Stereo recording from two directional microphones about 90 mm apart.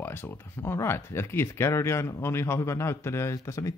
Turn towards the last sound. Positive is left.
turn(degrees=35)  # may be behind; listen again after turning